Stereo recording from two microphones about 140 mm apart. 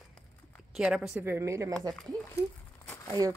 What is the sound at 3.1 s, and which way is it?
Speech, 25° right (ahead or behind).